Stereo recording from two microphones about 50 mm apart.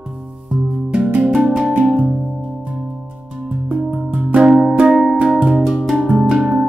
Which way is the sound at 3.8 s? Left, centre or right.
Centre.